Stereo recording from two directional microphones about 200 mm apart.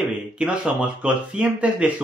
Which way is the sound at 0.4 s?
5° right (ahead or behind).